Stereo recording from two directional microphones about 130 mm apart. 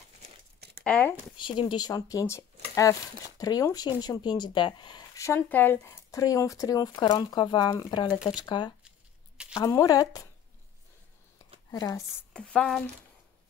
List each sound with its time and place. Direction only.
0.8 s speech: 10° left (ahead or behind)
1.3 s speech: 40° left (ahead or behind)
5.1 s speech: 20° left (ahead or behind)
6.1 s speech: 25° left (ahead or behind)
9.6 s speech: 25° left (ahead or behind)
11.7 s speech: 25° left (ahead or behind)
12.3 s a sound: 5° left (ahead or behind)